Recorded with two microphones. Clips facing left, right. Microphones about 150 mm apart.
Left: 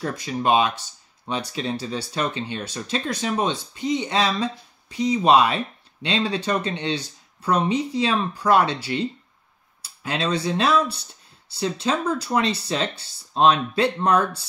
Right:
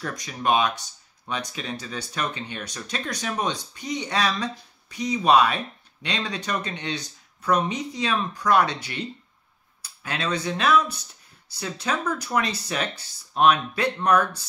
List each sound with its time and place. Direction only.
0.0 s speech: 30° left (ahead or behind)
10.0 s speech: 30° left (ahead or behind)